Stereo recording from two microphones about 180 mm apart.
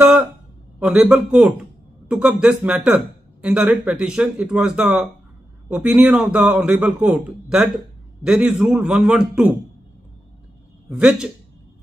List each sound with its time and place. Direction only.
0.0 s a sound: 10° right (ahead or behind)
0.7 s a man's voice: 5° right (ahead or behind)
10.9 s a man's voice: 5° right (ahead or behind)